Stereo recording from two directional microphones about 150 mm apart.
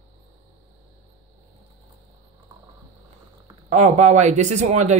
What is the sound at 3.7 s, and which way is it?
Speech, 50° right (ahead or behind).